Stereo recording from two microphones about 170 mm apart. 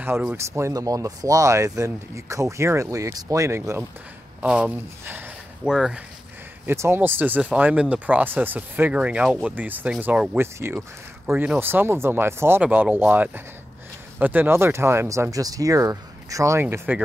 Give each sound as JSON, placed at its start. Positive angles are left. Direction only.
{"t": 0.0, "sound": "speech", "side_deg": -10}
{"t": 6.6, "sound": "speech", "side_deg": -15}